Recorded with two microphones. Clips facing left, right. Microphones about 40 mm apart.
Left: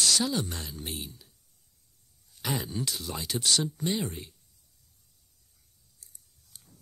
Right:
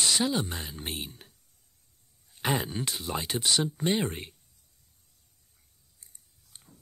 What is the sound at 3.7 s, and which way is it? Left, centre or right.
Speech, right.